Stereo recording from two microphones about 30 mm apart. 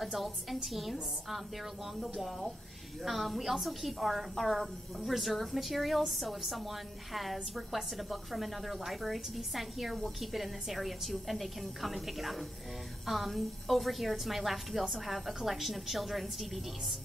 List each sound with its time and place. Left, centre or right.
0.0 s a woman's voice: centre
2.1 s a woman's voice: centre
13.0 s music: centre
13.3 s a woman's voice: centre